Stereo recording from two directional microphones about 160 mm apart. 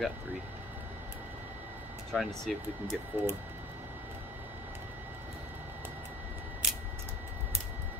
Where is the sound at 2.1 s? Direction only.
Centre (ahead or behind).